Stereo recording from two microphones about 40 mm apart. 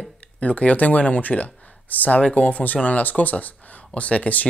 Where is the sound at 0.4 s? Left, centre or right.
Left.